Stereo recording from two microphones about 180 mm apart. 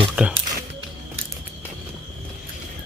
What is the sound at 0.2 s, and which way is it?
Speech, 10° right (ahead or behind).